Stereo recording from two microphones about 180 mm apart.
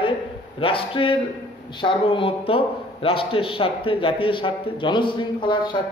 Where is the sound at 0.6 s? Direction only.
30° left (ahead or behind).